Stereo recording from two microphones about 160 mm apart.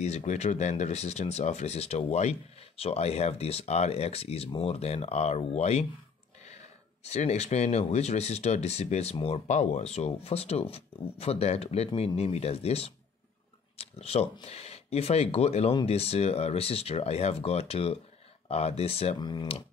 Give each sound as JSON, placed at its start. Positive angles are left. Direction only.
{"t": 0.0, "sound": "speech", "side_deg": 45}
{"t": 19.1, "sound": "speech", "side_deg": 30}